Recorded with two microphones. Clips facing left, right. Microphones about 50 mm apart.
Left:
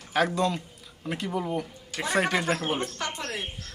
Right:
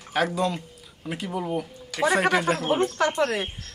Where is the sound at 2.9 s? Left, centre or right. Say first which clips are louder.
Right 10 dB; right.